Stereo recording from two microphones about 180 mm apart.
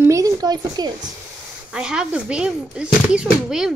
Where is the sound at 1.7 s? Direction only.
5° right (ahead or behind).